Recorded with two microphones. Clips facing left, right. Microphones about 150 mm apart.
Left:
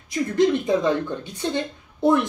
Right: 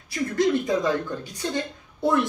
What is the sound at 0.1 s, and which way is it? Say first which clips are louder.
Speech: left 3 dB; 20° left (ahead or behind).